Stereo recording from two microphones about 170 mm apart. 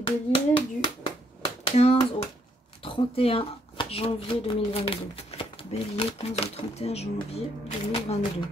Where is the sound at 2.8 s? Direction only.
35° left (ahead or behind).